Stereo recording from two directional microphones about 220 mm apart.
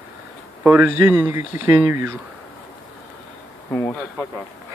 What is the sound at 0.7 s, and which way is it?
Speech, 10° right (ahead or behind).